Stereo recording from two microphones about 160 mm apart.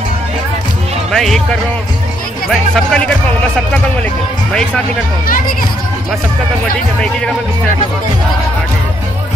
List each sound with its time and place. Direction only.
1.1 s speech: centre (ahead or behind)
2.5 s speech: 5° left (ahead or behind)
5.2 s speech: 65° left (ahead or behind)